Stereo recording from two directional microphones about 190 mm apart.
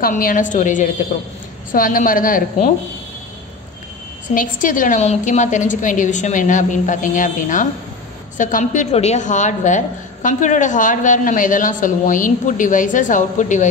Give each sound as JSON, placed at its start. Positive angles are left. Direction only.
{"t": 0.0, "sound": "a woman's voice", "side_deg": 45}
{"t": 4.3, "sound": "a woman's voice", "side_deg": 45}